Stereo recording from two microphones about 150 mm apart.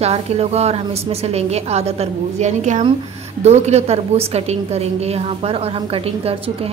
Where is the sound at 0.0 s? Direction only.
45° right (ahead or behind).